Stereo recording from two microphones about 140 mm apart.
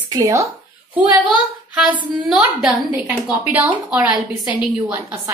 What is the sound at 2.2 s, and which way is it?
Speech, 5° right (ahead or behind).